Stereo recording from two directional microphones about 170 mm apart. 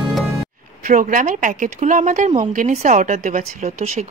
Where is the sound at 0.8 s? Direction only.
50° right (ahead or behind).